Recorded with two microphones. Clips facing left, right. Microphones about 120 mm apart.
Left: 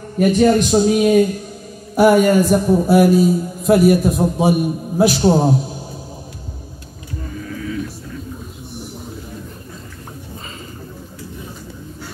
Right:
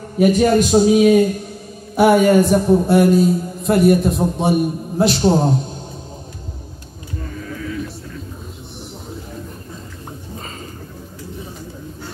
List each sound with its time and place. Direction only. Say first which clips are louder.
0.2 s a man's voice: even; 5° right (ahead or behind)